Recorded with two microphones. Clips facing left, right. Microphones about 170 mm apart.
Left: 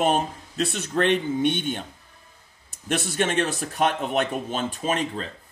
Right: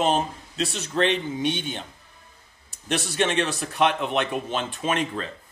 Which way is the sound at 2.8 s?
50° left (ahead or behind).